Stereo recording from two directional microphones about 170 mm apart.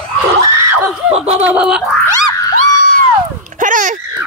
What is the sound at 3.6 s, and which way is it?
Dog, 50° right (ahead or behind).